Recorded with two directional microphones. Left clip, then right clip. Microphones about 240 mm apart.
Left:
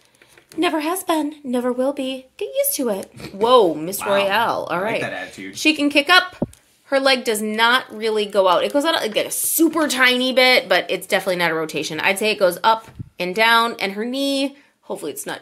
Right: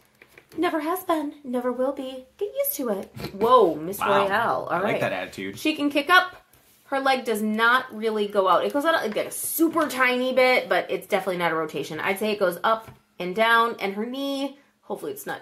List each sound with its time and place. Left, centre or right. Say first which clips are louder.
0.6 s a woman's voice: left 4 dB; left